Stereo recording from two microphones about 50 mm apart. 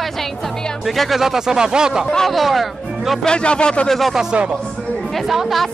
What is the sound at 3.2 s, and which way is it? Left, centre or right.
Speech, centre.